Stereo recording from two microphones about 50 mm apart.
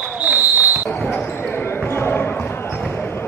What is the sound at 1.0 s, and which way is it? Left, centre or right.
Basketball bounce, left.